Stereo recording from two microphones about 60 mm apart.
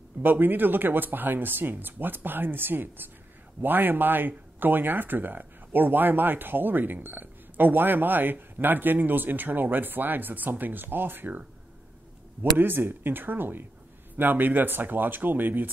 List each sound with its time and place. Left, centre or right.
0.2 s speech: right
12.5 s speech: right